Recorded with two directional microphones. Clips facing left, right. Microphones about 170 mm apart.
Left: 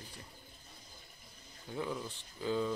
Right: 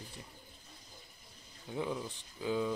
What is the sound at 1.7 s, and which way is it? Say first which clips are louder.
Speech: right 2 dB; 10° right (ahead or behind).